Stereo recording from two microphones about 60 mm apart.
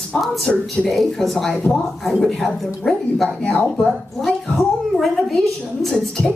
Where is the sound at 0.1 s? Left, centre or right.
Centre.